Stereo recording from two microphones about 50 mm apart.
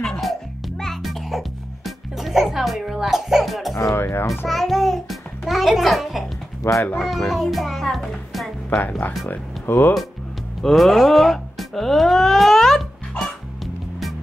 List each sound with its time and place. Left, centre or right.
0.2 s music: centre
3.9 s a child's voice: left
4.5 s music: centre
6.6 s speech: left
7.0 s a child's voice: centre
8.6 s speech: left
10.6 s music: centre